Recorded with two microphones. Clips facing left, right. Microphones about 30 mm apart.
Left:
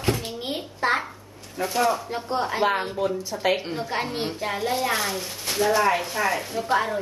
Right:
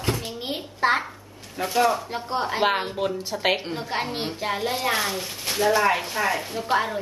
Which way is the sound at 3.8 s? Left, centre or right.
Centre.